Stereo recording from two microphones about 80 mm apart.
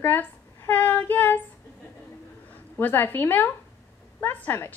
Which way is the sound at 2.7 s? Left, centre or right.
Left.